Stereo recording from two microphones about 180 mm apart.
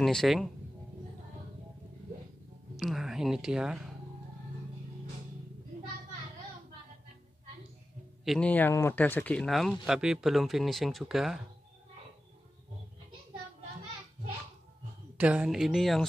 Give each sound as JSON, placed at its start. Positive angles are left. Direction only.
{"t": 0.0, "sound": "speech", "side_deg": 0}
{"t": 2.7, "sound": "speech", "side_deg": 0}
{"t": 8.3, "sound": "speech", "side_deg": 5}
{"t": 15.1, "sound": "speech", "side_deg": -5}